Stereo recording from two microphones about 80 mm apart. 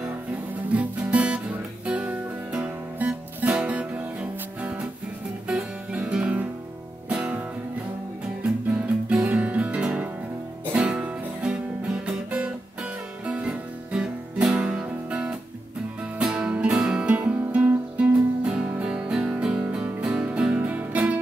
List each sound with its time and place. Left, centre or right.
0.7 s music: centre